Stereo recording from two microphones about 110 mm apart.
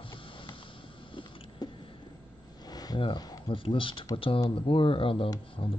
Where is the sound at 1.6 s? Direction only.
40° left (ahead or behind).